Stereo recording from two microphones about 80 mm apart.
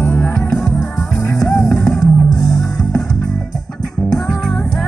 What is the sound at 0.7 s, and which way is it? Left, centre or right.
Music, centre.